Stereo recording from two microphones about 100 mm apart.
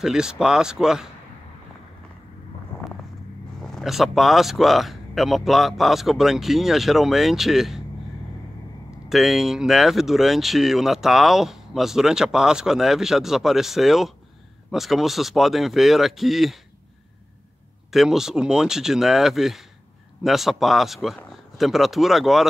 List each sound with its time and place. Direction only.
0.0 s speech: 5° right (ahead or behind)
2.7 s vehicle: 25° left (ahead or behind)
3.6 s speech: centre (ahead or behind)
9.1 s speech: centre (ahead or behind)
17.9 s speech: 5° right (ahead or behind)